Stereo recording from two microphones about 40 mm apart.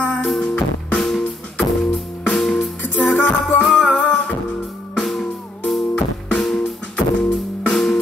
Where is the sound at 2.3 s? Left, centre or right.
Centre.